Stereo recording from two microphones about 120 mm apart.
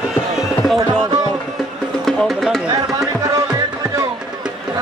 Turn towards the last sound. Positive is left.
turn(degrees=-30)  # may be behind; listen again after turning